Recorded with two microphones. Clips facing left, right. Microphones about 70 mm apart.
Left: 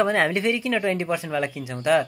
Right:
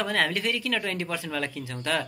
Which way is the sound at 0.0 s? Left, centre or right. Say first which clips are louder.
Left 6 dB; left.